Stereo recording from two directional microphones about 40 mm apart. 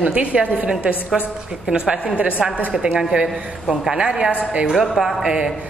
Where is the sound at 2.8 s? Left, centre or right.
Right.